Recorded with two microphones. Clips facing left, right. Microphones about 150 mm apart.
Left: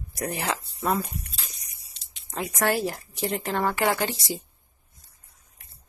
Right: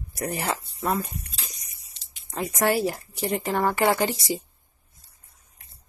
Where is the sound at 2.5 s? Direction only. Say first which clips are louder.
Right 2 dB; 10° right (ahead or behind).